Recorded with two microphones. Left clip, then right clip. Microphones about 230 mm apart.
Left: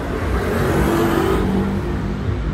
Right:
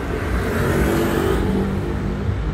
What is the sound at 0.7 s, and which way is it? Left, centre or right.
Vehicle, centre.